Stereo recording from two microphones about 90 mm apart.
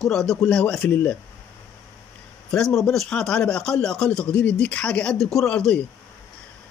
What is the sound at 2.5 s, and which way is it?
Speech, 5° left (ahead or behind).